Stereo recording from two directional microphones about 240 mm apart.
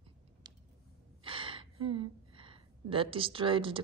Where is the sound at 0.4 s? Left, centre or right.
Centre.